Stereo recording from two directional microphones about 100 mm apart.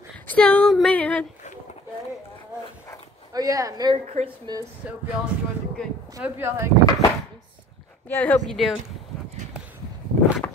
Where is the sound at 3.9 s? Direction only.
90° right.